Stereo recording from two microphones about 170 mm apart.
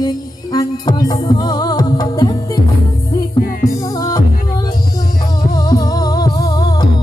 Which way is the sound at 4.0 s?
20° left (ahead or behind).